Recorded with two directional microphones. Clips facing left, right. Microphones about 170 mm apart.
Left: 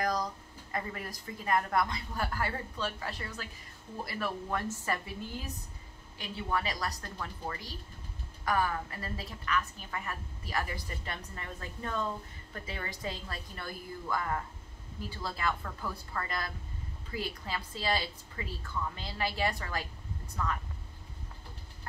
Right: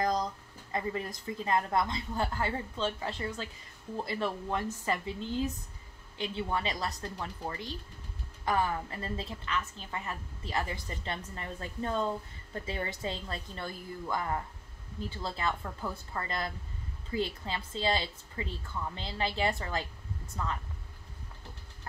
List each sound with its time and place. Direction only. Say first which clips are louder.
0.7 s a woman's voice: right 4 dB; 25° right (ahead or behind)